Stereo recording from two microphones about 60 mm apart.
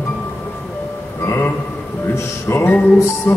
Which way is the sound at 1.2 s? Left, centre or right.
Left.